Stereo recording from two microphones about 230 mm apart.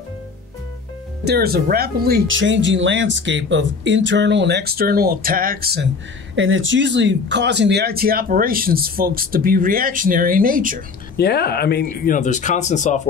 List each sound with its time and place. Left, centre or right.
1.2 s speech: right
6.3 s speech: right
11.1 s speech: left